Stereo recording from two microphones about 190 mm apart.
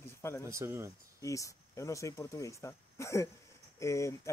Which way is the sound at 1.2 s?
15° left (ahead or behind).